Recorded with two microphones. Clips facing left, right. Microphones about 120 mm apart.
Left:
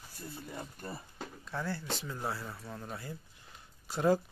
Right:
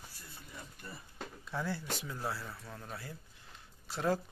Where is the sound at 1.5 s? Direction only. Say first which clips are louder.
Left 1 dB; 5° right (ahead or behind).